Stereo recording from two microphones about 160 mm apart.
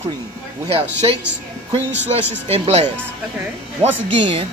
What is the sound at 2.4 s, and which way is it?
Speech, 40° right (ahead or behind).